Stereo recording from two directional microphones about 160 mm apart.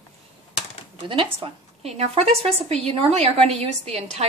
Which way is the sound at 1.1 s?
35° right (ahead or behind).